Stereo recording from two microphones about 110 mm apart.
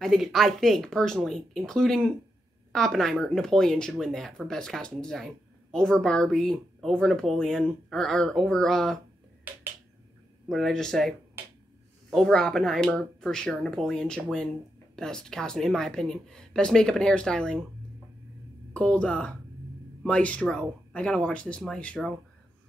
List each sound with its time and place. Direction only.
0.0 s speech: centre (ahead or behind)
9.5 s finger snapping: 15° right (ahead or behind)
10.5 s speech: 5° left (ahead or behind)
18.7 s speech: 10° left (ahead or behind)